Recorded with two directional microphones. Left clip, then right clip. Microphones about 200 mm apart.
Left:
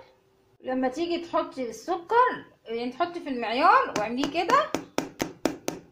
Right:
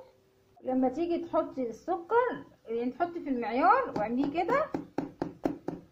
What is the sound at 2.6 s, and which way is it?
Speech, centre (ahead or behind).